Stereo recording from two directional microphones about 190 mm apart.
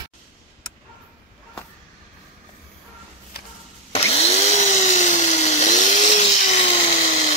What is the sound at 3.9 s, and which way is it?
Drill, 30° left (ahead or behind).